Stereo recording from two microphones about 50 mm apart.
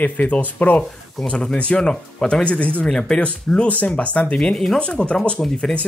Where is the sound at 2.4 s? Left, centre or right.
Left.